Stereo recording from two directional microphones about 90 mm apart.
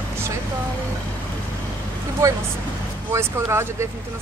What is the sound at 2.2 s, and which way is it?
Speech, 35° right (ahead or behind).